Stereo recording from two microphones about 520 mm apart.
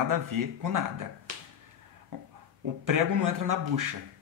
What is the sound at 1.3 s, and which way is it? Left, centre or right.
Finger snapping, right.